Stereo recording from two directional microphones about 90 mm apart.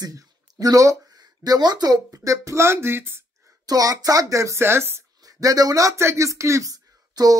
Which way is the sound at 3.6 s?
45° right (ahead or behind).